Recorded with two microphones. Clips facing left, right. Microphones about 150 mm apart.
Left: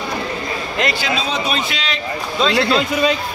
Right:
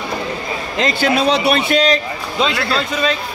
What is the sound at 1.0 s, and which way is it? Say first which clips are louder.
Speech: right 7 dB; 65° right (ahead or behind).